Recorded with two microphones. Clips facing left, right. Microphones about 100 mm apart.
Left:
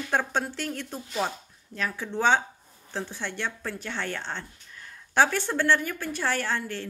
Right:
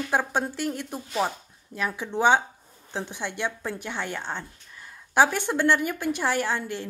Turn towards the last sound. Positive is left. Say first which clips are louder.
# right 2 dB
turn(degrees=-15)  # may be behind; listen again after turning